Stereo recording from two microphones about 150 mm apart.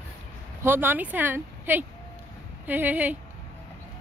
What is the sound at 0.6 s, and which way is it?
Speech, 15° right (ahead or behind).